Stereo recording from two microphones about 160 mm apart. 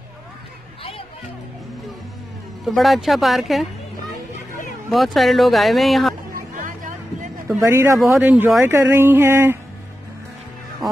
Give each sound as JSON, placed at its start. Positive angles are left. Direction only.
{"t": 2.7, "sound": "speech", "side_deg": 0}
{"t": 4.8, "sound": "speech", "side_deg": 0}
{"t": 6.3, "sound": "a sound", "side_deg": -60}
{"t": 7.4, "sound": "speech", "side_deg": -15}
{"t": 10.8, "sound": "speech", "side_deg": 0}